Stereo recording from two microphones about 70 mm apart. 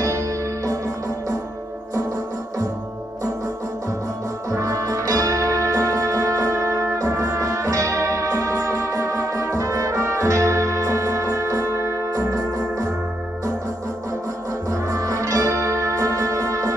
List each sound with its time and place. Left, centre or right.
0.0 s music: right
4.5 s music: right
14.7 s music: right